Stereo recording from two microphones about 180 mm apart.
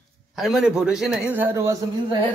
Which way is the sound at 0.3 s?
Centre (ahead or behind).